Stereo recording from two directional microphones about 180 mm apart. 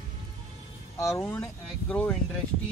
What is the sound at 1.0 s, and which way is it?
Speech, 15° left (ahead or behind).